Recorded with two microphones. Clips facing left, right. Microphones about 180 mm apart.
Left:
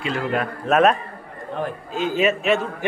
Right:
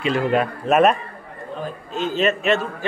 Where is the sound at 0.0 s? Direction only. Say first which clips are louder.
Right 4 dB; 20° right (ahead or behind).